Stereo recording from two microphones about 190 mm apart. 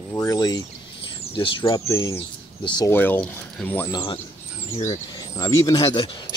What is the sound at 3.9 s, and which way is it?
Speech, 25° left (ahead or behind).